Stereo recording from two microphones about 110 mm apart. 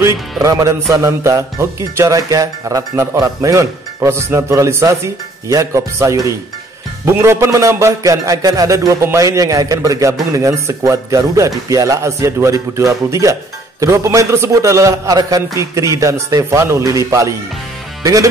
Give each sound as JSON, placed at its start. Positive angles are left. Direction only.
{"t": 0.4, "sound": "music", "side_deg": -30}